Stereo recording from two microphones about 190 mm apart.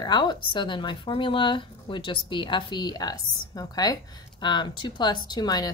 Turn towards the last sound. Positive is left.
turn(degrees=20)  # may be behind; listen again after turning